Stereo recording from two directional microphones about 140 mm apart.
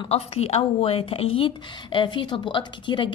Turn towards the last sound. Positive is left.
turn(degrees=35)  # may be behind; listen again after turning